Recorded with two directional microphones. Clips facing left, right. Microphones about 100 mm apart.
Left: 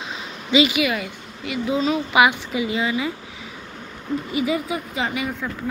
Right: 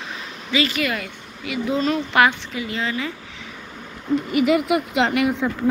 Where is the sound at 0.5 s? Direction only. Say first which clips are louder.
Left 4 dB; 15° left (ahead or behind).